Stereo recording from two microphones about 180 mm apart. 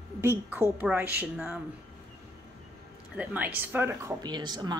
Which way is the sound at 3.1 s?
10° right (ahead or behind).